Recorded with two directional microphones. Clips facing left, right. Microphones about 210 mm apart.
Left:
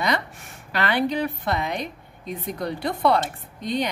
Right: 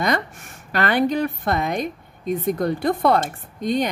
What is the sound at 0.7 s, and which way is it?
A woman's voice, 45° right (ahead or behind).